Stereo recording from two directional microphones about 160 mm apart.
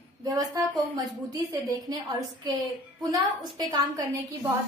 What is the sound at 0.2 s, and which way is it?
A woman's voice, 20° right (ahead or behind).